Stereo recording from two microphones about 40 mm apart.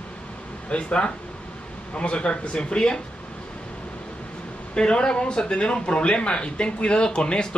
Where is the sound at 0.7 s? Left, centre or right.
Left.